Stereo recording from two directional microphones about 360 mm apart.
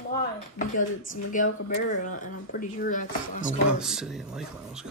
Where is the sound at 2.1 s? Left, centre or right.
Left.